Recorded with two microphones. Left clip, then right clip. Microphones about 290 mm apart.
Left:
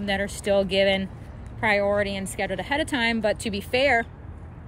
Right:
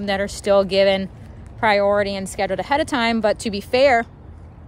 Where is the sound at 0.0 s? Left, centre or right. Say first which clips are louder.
Right 4 dB; right.